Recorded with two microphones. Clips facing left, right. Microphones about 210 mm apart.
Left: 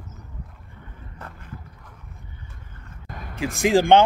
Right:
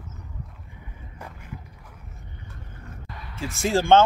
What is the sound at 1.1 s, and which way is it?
Vehicle, 10° right (ahead or behind).